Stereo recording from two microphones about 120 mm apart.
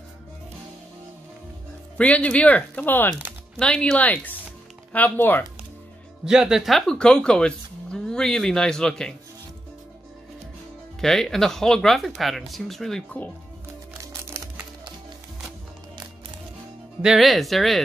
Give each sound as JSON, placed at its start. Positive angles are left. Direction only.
{"t": 2.0, "sound": "speech", "side_deg": 10}
{"t": 6.2, "sound": "speech", "side_deg": -5}
{"t": 11.0, "sound": "speech", "side_deg": 5}
{"t": 14.3, "sound": "music", "side_deg": -25}
{"t": 17.0, "sound": "speech", "side_deg": 0}